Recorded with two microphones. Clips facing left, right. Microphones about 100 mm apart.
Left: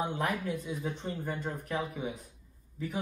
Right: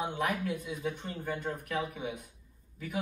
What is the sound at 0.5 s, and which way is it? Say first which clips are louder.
Speech: even; 30° left (ahead or behind).